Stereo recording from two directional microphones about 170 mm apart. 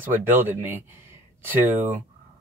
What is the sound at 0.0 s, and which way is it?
Speech, 10° right (ahead or behind).